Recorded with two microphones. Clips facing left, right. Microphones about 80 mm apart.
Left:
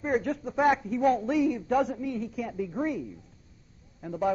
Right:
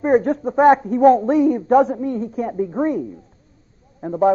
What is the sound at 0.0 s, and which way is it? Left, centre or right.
A man's voice, right.